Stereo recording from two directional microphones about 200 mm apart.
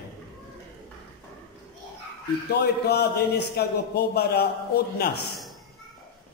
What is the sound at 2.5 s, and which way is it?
A man's voice, 55° left (ahead or behind).